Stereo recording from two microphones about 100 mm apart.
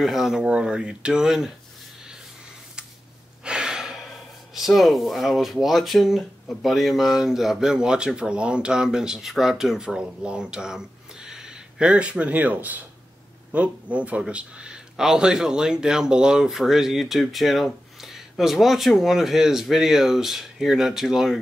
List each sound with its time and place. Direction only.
0.0 s speech: 5° right (ahead or behind)
3.4 s gasp: 10° right (ahead or behind)
4.6 s speech: centre (ahead or behind)